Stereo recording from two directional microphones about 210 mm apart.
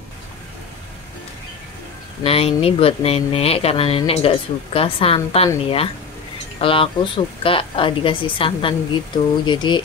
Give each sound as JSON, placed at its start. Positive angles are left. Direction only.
{"t": 2.2, "sound": "speech", "side_deg": 30}